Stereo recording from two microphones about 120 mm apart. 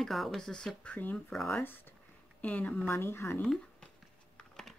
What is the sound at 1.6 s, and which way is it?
Speech, 15° left (ahead or behind).